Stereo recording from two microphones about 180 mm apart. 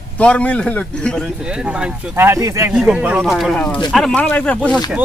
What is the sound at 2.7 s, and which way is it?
Speech, 5° right (ahead or behind).